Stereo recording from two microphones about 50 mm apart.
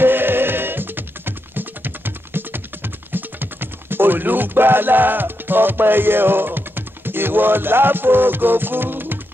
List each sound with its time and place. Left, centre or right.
0.0 s music: right